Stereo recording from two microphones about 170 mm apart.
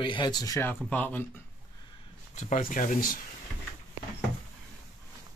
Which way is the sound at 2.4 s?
45° left (ahead or behind).